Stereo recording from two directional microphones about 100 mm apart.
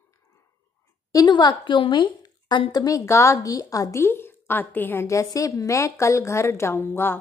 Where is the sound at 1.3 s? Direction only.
50° left (ahead or behind).